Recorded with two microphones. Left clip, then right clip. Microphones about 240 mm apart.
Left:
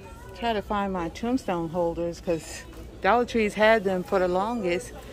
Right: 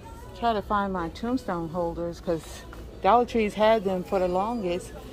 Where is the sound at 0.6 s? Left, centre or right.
Left.